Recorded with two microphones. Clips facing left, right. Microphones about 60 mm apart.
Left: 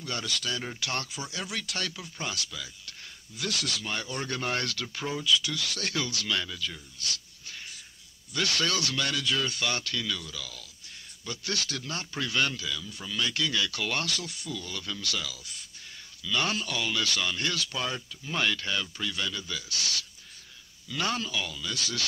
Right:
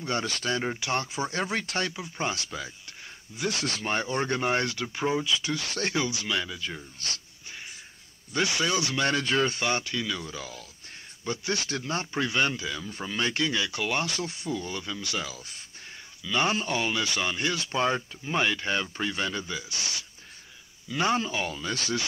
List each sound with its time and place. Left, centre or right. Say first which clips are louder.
0.0 s speech: right 4 dB; right
8.3 s speech: right 3 dB; right